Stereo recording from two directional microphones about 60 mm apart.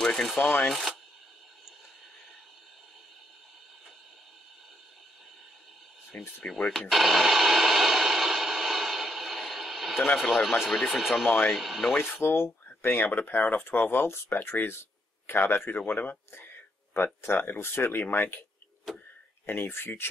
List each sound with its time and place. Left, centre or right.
0.0 s rub: centre
0.7 s speech: centre
6.4 s speech: centre
6.9 s a sound: centre
10.0 s speech: centre
11.2 s speech: left
11.5 s speech: centre
12.0 s speech: left
18.9 s a sound: centre
19.4 s speech: left